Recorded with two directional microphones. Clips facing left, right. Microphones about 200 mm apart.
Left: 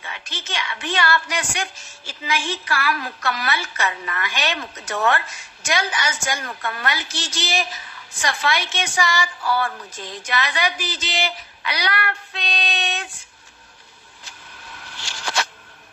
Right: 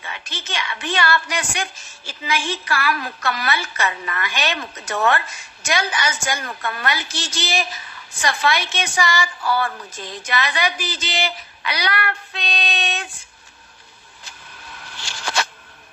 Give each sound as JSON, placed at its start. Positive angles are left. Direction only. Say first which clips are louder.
{"t": 0.2, "sound": "a woman's voice", "louder": "even", "side_deg": -55}
{"t": 10.3, "sound": "speech", "louder": "right 1 dB", "side_deg": -55}